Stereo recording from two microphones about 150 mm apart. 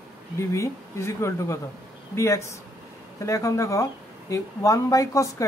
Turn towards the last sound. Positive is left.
turn(degrees=20)  # may be behind; listen again after turning